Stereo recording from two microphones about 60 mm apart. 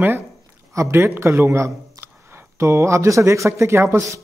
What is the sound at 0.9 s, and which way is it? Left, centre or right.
A man's voice, right.